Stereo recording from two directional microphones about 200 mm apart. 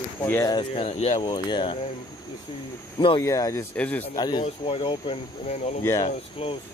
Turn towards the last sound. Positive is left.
turn(degrees=30)  # may be behind; listen again after turning